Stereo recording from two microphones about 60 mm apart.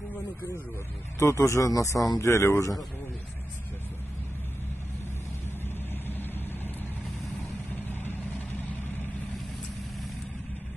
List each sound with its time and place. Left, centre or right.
1.2 s speech: left
2.1 s speech: left
6.0 s vehicle: left
7.7 s vehicle: left